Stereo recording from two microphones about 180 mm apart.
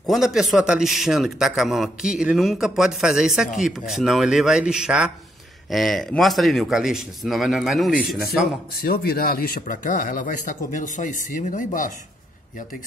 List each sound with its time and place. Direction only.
0.0 s a man's voice: centre (ahead or behind)
8.7 s speech: 60° left (ahead or behind)